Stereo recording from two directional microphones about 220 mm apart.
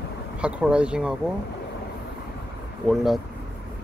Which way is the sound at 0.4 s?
5° right (ahead or behind).